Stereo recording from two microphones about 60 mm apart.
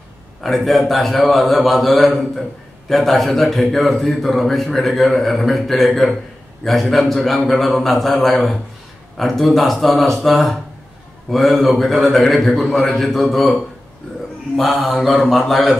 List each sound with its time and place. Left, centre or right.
0.4 s a man's voice: centre
14.7 s mantra: centre
15.0 s a man's voice: centre